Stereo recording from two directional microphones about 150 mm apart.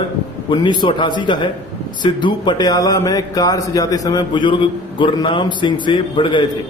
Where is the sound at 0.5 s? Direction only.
30° left (ahead or behind).